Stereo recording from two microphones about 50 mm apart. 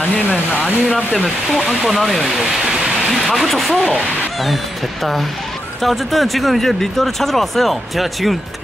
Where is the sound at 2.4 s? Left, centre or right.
Centre.